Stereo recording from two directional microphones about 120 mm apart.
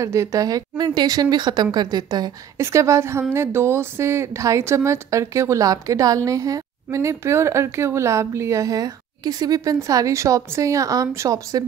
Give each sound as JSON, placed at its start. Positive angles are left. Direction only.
{"t": 0.0, "sound": "speech", "side_deg": -25}
{"t": 2.5, "sound": "a woman's voice", "side_deg": -25}